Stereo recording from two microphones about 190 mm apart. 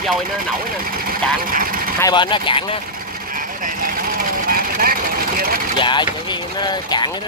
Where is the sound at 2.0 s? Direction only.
25° left (ahead or behind).